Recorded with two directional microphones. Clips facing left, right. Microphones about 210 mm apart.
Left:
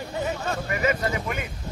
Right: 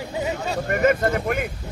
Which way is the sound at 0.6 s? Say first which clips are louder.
Right 7 dB; 55° right (ahead or behind).